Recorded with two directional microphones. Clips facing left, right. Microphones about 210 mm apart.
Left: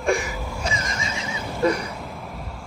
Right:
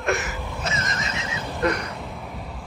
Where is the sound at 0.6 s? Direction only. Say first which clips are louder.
Even; 10° left (ahead or behind).